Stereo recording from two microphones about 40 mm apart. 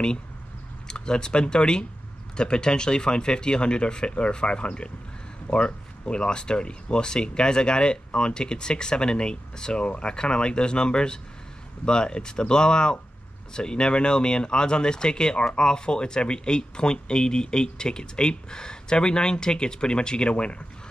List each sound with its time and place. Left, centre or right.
0.8 s speech: left